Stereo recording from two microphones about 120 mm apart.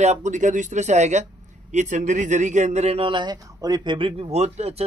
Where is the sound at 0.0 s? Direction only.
75° right (ahead or behind); by 4.1 s 40° right (ahead or behind).